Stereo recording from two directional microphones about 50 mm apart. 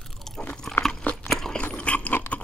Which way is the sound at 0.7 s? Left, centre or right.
Left.